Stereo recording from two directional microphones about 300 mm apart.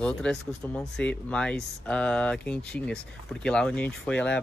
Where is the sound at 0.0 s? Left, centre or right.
Centre.